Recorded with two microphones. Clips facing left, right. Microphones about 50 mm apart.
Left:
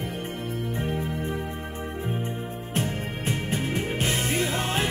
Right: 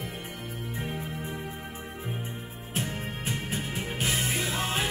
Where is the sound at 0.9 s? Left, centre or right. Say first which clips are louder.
Left 6 dB; left.